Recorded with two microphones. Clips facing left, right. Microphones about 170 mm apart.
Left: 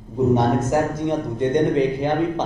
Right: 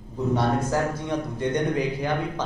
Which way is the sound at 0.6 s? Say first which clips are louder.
Left 5 dB; 20° left (ahead or behind).